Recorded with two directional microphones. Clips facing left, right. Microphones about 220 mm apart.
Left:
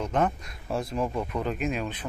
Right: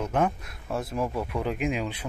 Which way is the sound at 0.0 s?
10° right (ahead or behind).